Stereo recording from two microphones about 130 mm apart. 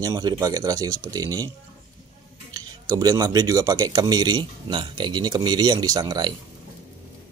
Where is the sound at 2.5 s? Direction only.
30° right (ahead or behind).